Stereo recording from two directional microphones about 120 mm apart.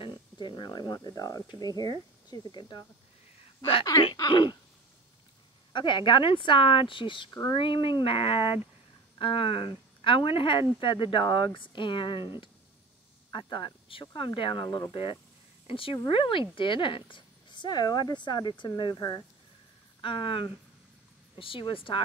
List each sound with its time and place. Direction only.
0.0 s a sound: 40° left (ahead or behind)
1.9 s a woman's voice: 35° left (ahead or behind)
4.0 s a woman's voice: 40° left (ahead or behind)
5.7 s speech: 40° left (ahead or behind)
13.3 s speech: 40° left (ahead or behind)
14.6 s a woman's voice: 35° left (ahead or behind)
15.6 s a woman's voice: 50° left (ahead or behind)
20.0 s speech: 45° left (ahead or behind)